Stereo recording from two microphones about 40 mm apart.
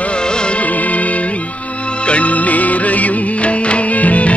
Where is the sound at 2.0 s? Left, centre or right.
Left.